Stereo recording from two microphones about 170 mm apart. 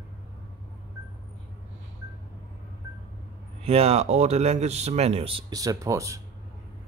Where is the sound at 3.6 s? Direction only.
35° right (ahead or behind).